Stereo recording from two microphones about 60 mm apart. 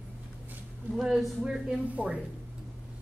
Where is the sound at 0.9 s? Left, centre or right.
Centre.